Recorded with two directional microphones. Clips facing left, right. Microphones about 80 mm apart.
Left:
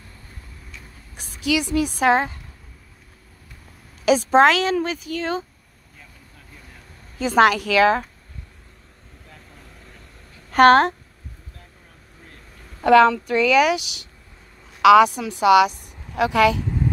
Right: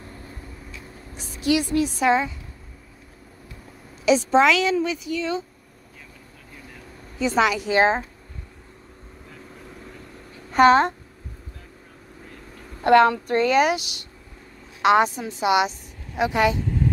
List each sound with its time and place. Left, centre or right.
1.5 s a woman's voice: left
4.0 s a woman's voice: left
7.2 s a woman's voice: left
10.5 s a woman's voice: left
12.9 s speech: left
14.8 s a woman's voice: left